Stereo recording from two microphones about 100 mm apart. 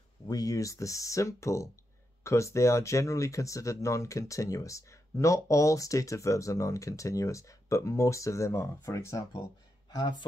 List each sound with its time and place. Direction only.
0.3 s speech: 35° left (ahead or behind)
9.8 s speech: 45° left (ahead or behind)